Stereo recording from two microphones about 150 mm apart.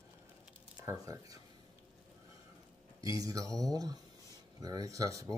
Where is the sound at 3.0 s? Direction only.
25° right (ahead or behind).